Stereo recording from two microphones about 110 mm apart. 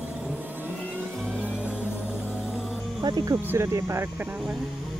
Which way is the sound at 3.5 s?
25° right (ahead or behind).